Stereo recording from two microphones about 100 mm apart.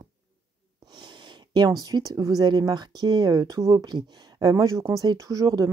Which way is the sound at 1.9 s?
40° right (ahead or behind).